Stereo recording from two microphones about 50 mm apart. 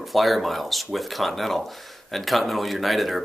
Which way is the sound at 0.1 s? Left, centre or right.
Centre.